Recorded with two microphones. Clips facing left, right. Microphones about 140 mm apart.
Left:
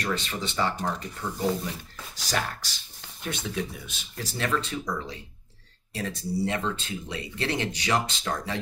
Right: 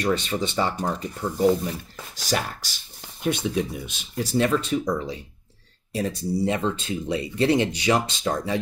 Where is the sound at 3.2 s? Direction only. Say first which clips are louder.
Right 7 dB; 15° right (ahead or behind).